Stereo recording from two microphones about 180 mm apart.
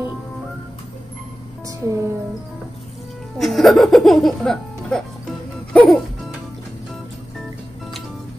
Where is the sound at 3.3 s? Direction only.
Centre (ahead or behind).